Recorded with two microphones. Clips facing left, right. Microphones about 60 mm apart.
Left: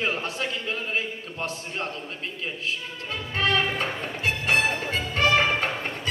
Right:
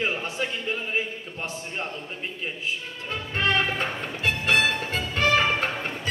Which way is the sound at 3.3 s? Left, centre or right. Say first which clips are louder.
Even; right.